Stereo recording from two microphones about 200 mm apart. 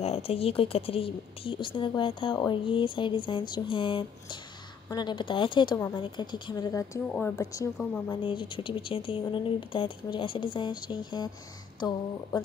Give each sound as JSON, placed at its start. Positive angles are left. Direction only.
{"t": 0.0, "sound": "a woman's voice", "side_deg": 30}
{"t": 8.1, "sound": "speech", "side_deg": 25}